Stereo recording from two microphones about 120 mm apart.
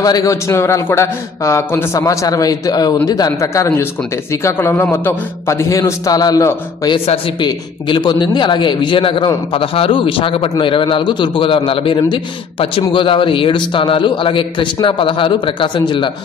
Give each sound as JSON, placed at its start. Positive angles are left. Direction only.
{"t": 0.0, "sound": "a man's voice", "side_deg": 30}